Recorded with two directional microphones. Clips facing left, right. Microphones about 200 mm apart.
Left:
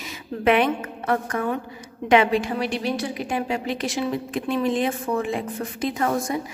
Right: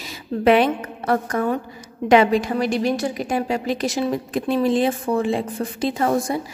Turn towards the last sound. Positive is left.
turn(degrees=-30)  # may be behind; listen again after turning